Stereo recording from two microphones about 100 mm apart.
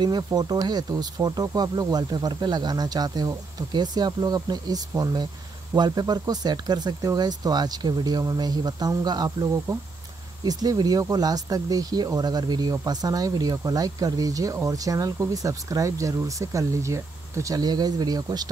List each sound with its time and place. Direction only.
0.0 s speech: 40° right (ahead or behind)